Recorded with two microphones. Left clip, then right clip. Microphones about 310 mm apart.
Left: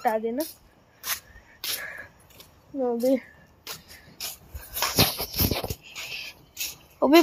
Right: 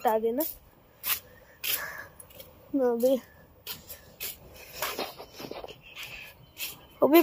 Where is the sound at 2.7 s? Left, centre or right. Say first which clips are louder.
Even; right.